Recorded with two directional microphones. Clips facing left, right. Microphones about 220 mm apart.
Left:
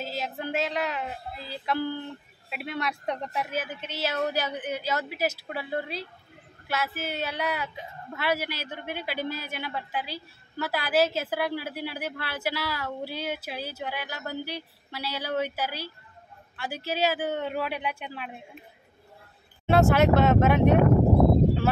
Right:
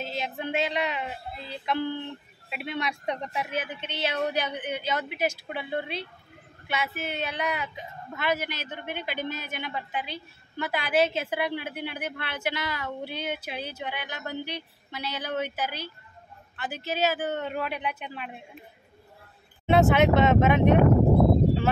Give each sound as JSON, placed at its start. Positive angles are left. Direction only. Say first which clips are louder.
{"t": 0.0, "sound": "a woman's voice", "louder": "even", "side_deg": 5}
{"t": 19.7, "sound": "a woman's voice", "louder": "even", "side_deg": 5}